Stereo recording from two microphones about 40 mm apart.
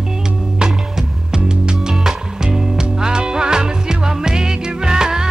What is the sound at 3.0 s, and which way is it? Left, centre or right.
Music, right.